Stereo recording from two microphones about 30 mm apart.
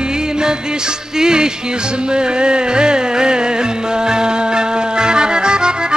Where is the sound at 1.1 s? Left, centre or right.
Right.